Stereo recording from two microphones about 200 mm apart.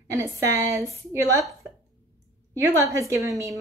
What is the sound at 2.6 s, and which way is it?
Speech, 15° right (ahead or behind).